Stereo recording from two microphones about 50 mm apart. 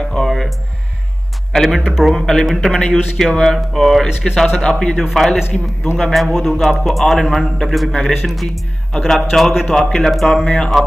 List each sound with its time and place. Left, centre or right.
0.0 s music: centre
0.3 s music: centre
1.5 s speech: centre
1.8 s a man's voice: centre
2.0 s a man's voice: centre
9.5 s a man's voice: centre
9.8 s speech: centre
10.3 s a man's voice: centre